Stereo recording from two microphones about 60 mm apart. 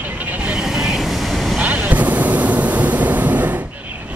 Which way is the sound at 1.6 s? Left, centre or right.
Right.